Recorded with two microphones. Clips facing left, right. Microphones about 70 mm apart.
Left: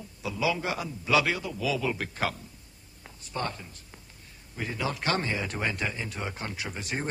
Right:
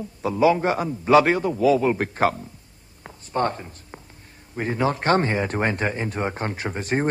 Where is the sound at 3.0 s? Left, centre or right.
Right.